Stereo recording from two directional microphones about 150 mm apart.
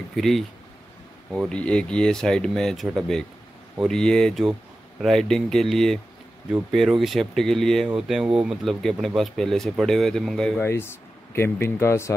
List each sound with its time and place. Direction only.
0.1 s speech: centre (ahead or behind)
1.5 s speech: 5° left (ahead or behind)
10.6 s speech: 15° left (ahead or behind)